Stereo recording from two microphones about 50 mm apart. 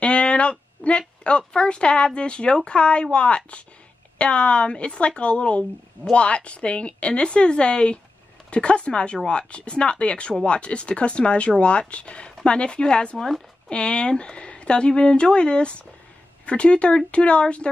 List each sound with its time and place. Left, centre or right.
0.0 s speech: left